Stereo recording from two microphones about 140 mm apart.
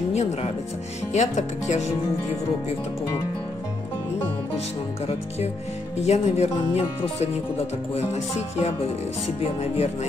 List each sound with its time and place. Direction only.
0.1 s speech: 50° left (ahead or behind)
5.9 s speech: 50° left (ahead or behind)